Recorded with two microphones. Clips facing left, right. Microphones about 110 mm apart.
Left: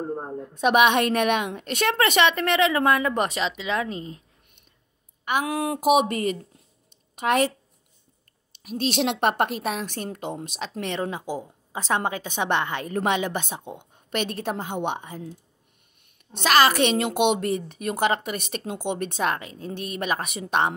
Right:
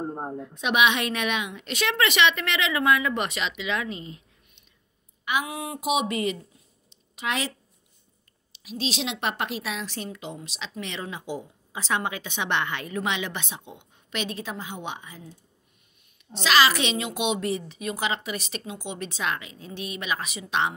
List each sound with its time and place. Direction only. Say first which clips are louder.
0.6 s a woman's voice: left 5 dB; 45° left (ahead or behind)
5.5 s speech: left 8 dB; 60° left (ahead or behind)
5.8 s a woman's voice: left 5 dB; 50° left (ahead or behind)
8.6 s a woman's voice: left 6 dB; 55° left (ahead or behind)
16.3 s a woman's voice: left 3 dB; 50° left (ahead or behind)